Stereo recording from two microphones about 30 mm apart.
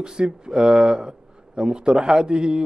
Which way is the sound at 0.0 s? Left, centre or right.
Right.